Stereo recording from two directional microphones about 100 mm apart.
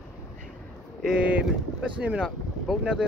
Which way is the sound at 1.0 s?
5° right (ahead or behind).